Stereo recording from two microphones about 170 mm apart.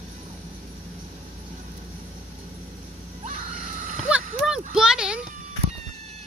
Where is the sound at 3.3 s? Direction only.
45° right (ahead or behind).